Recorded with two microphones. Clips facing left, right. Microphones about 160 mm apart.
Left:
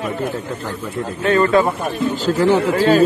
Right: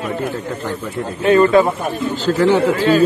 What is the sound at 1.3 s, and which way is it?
Speech, 20° right (ahead or behind).